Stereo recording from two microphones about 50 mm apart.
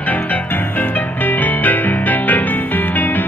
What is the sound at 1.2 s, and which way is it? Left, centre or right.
Music, left.